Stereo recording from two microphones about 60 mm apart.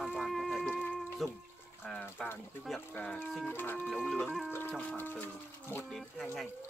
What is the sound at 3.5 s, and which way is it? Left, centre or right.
Speech, left.